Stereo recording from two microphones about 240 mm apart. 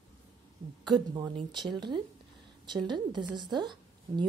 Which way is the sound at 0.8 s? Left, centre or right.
Centre.